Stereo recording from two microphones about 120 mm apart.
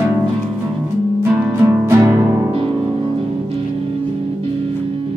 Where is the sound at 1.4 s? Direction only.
15° right (ahead or behind).